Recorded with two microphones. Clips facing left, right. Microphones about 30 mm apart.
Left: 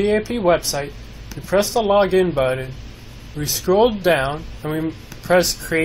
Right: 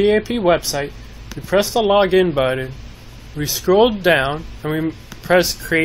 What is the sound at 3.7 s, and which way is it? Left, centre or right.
Speech, right.